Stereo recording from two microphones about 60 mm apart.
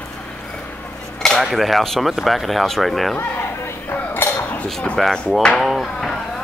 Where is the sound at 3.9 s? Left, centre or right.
Left.